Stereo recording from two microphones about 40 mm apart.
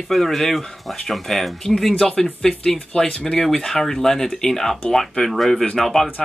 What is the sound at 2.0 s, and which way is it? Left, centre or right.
Speech, centre.